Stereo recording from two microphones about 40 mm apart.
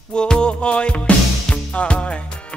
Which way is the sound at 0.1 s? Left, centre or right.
Left.